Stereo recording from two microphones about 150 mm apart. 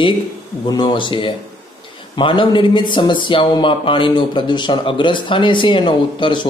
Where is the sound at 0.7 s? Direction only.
30° left (ahead or behind).